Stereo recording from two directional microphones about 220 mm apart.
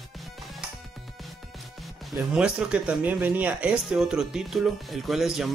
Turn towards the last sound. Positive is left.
turn(degrees=0)  # may be behind; listen again after turning